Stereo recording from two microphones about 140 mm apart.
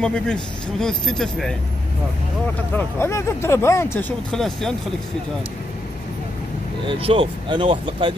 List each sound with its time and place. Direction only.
0.0 s speech: 5° left (ahead or behind)
2.7 s speech: 20° left (ahead or behind)
4.3 s speech: 5° left (ahead or behind)
6.9 s speech: 40° right (ahead or behind)